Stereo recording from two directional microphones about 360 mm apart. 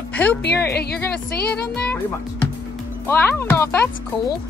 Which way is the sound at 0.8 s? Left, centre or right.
Left.